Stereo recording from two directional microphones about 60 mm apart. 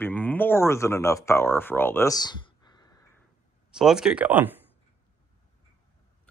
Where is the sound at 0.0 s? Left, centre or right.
Left.